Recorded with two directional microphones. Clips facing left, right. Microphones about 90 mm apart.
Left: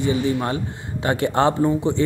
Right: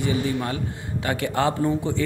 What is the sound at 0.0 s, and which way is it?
Speech, 30° left (ahead or behind).